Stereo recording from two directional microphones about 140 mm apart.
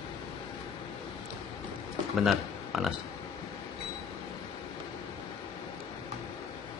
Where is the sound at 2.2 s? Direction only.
Centre (ahead or behind).